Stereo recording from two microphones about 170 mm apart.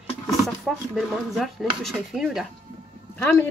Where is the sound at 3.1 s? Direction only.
10° left (ahead or behind).